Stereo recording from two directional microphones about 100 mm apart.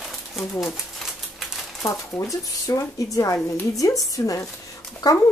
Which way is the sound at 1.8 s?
35° left (ahead or behind).